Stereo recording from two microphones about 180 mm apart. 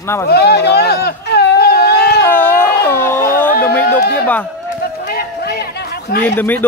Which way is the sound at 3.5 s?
55° left (ahead or behind).